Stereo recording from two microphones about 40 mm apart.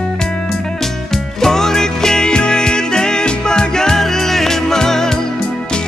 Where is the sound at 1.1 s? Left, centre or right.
Centre.